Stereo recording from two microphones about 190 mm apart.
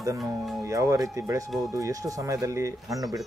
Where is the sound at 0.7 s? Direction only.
15° right (ahead or behind).